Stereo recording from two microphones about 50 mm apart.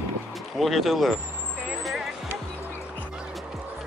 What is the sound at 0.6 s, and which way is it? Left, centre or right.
Speech, centre.